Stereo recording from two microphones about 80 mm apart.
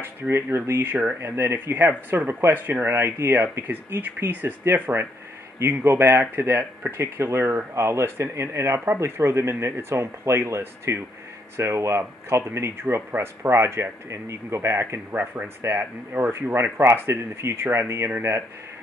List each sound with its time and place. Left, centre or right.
0.0 s speech: right